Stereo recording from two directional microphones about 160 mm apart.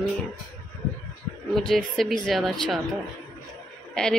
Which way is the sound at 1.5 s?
Centre (ahead or behind).